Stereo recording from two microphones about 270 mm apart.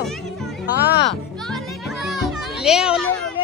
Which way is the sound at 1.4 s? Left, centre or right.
Centre.